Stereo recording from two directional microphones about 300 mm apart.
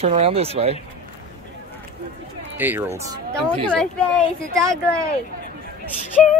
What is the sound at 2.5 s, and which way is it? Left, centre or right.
Speech, centre.